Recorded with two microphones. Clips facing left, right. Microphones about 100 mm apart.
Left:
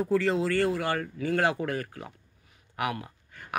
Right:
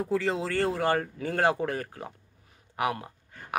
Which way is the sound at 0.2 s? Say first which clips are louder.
Left 2 dB; 25° right (ahead or behind).